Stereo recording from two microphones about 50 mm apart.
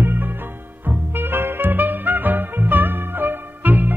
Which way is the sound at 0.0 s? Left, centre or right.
Right.